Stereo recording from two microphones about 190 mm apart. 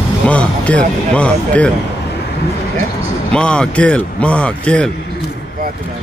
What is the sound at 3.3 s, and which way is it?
Speech, 5° left (ahead or behind).